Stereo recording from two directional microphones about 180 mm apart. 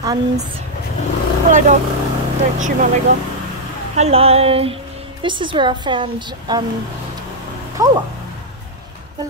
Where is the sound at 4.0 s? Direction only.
35° right (ahead or behind).